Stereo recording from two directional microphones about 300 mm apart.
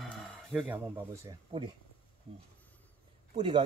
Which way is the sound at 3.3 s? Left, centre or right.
Centre.